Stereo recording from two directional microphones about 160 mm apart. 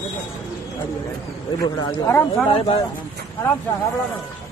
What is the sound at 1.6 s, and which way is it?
Speech, 20° left (ahead or behind).